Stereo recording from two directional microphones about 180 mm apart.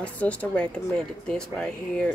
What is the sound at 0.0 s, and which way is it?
Speech, 5° left (ahead or behind).